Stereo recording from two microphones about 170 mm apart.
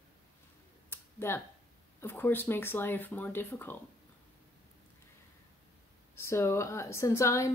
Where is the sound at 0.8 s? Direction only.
15° left (ahead or behind).